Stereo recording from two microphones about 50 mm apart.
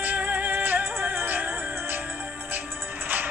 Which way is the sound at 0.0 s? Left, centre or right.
Right.